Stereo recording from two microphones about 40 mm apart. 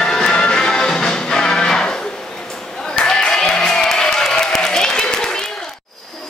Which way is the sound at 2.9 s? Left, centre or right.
Left.